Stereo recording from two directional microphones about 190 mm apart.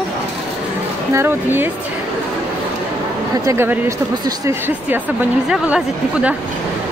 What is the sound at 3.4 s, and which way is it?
Speech, 15° right (ahead or behind).